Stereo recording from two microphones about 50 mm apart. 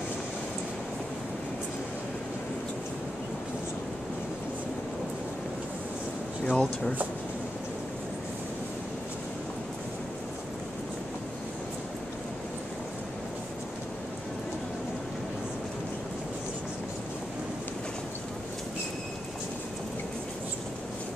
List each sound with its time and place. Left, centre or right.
6.5 s speech: centre